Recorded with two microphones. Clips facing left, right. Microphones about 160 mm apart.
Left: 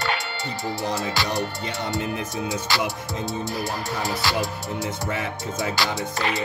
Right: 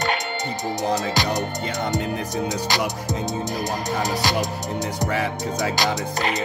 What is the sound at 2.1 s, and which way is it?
Music, 40° right (ahead or behind).